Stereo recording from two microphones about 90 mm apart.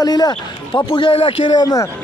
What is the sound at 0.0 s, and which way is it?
Speech, 45° left (ahead or behind).